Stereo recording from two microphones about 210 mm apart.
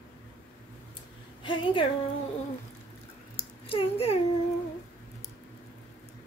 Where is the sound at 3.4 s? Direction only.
25° left (ahead or behind).